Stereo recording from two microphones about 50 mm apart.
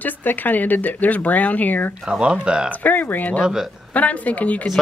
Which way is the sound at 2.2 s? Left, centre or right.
Centre.